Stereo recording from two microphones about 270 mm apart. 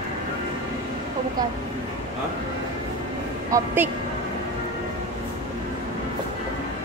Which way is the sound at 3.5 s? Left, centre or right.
Centre.